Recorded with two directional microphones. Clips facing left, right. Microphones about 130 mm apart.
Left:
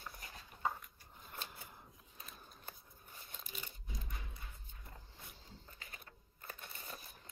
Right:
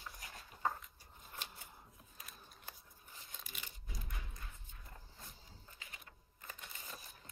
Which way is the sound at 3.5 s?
45° left (ahead or behind).